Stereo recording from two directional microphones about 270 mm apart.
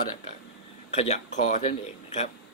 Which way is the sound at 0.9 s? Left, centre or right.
Left.